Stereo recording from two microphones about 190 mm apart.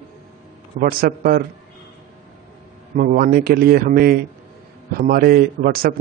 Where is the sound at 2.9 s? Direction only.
45° right (ahead or behind).